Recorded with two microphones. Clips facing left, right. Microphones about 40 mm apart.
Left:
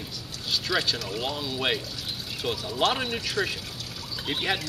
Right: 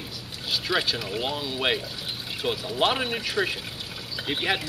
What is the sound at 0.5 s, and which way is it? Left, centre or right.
Speech, centre.